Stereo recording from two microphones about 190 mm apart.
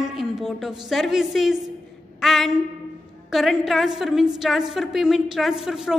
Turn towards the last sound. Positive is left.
turn(degrees=0)  # may be behind; listen again after turning